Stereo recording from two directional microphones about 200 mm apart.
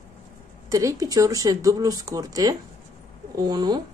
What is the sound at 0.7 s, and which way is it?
Speech, 15° right (ahead or behind).